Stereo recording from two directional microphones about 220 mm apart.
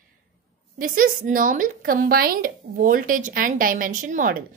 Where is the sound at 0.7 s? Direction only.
40° right (ahead or behind).